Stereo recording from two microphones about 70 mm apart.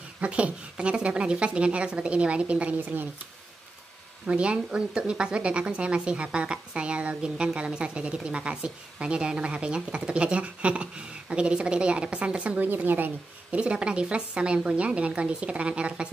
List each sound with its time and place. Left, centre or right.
0.2 s a woman's voice: centre
4.3 s a woman's voice: centre
13.6 s a woman's voice: centre